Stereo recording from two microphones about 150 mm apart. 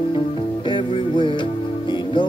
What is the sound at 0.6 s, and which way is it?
Music, 35° left (ahead or behind).